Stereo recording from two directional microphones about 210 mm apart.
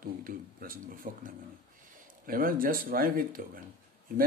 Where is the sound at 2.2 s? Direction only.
40° right (ahead or behind).